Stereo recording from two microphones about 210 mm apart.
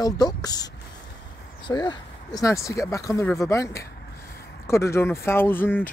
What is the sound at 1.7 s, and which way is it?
Speech, 20° left (ahead or behind).